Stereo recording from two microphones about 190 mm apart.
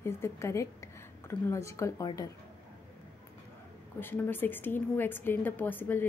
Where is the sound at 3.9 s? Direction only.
10° left (ahead or behind).